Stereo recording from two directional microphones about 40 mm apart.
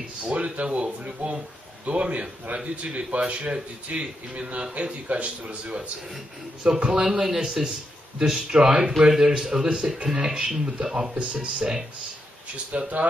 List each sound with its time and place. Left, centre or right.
0.2 s a man's voice: right
6.9 s speech: centre
12.7 s a man's voice: right